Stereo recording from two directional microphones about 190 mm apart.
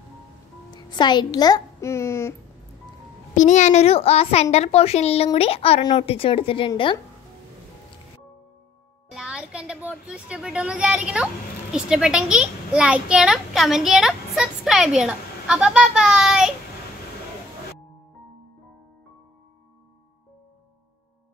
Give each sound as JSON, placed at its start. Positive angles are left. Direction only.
{"t": 0.7, "sound": "a child's voice", "side_deg": 25}
{"t": 3.3, "sound": "a child's voice", "side_deg": 40}
{"t": 9.1, "sound": "a child's voice", "side_deg": -5}